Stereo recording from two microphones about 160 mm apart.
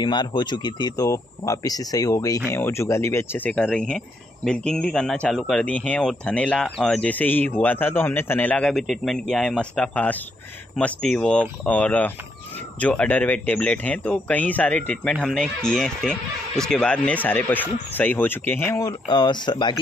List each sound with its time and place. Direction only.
0.0 s speech: 30° left (ahead or behind); by 18.8 s 15° left (ahead or behind)
18.8 s speech: 25° left (ahead or behind)